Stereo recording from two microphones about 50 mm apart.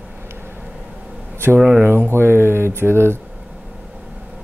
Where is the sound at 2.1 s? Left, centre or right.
Right.